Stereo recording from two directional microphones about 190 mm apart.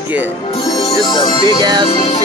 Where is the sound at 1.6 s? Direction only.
20° right (ahead or behind).